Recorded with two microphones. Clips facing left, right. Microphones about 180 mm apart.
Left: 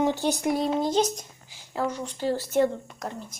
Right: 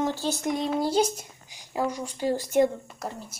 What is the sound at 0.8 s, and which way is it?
Speech, 10° right (ahead or behind).